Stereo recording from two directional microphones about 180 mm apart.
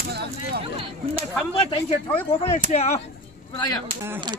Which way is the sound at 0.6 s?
30° right (ahead or behind).